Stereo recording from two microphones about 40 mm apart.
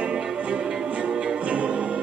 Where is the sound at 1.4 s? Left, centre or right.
Right.